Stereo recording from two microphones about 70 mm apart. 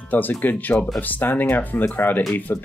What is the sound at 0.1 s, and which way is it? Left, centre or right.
Speech, left.